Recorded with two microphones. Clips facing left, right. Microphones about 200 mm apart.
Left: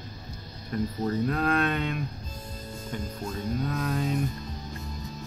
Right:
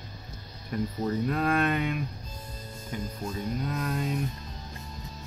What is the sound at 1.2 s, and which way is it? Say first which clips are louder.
Speech: right 1 dB; 5° right (ahead or behind).